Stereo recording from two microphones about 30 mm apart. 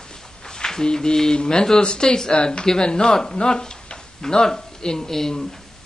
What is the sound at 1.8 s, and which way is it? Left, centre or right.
A man's voice, left.